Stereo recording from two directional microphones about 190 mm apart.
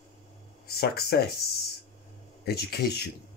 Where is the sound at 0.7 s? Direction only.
55° left (ahead or behind).